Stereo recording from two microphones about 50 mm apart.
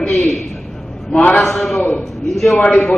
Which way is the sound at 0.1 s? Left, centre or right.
Centre.